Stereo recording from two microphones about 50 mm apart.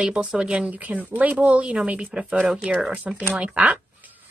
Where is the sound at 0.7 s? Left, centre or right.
Right.